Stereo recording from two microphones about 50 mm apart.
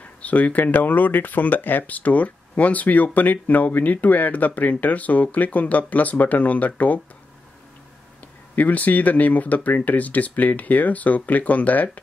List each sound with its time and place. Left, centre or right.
0.0 s speech: left
8.5 s speech: left